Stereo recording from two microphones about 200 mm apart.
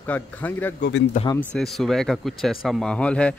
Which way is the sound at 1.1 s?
40° left (ahead or behind).